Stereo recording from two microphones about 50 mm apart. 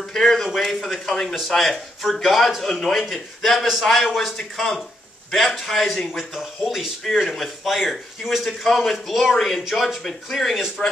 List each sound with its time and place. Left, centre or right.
0.0 s a man's voice: centre
7.1 s speech: centre
10.8 s speech: centre